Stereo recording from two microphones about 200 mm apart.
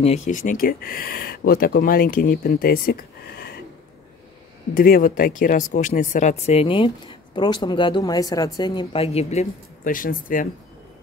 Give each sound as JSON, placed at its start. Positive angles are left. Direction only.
{"t": 0.0, "sound": "speech", "side_deg": 35}
{"t": 4.7, "sound": "speech", "side_deg": 45}